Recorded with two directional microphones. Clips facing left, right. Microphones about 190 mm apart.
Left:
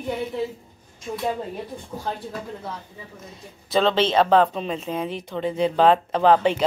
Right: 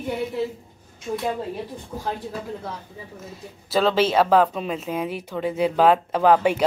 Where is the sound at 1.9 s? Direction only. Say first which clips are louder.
Right 1 dB; 5° right (ahead or behind).